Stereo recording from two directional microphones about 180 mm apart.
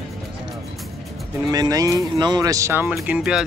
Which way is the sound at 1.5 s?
20° right (ahead or behind).